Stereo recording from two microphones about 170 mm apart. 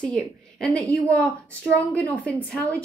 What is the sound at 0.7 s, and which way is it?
Speech, 20° right (ahead or behind).